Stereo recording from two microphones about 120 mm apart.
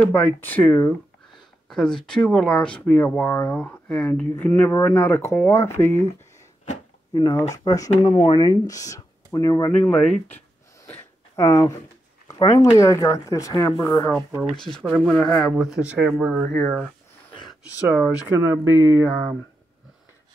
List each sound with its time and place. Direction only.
0.0 s speech: 15° left (ahead or behind)
4.6 s speech: 30° left (ahead or behind)
4.9 s speech: 20° left (ahead or behind)
7.2 s speech: 30° left (ahead or behind)
8.1 s speech: 45° left (ahead or behind)
8.5 s speech: 30° left (ahead or behind)
9.7 s speech: 15° left (ahead or behind)
10.9 s a sound: 20° left (ahead or behind)
12.3 s speech: 25° left (ahead or behind)
15.0 s speech: 5° left (ahead or behind)
15.5 s speech: 5° right (ahead or behind)
18.2 s speech: 20° right (ahead or behind)